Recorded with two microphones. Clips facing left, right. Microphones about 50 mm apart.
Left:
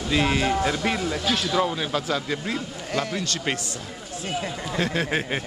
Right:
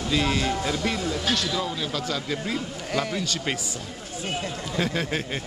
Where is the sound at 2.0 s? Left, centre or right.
Centre.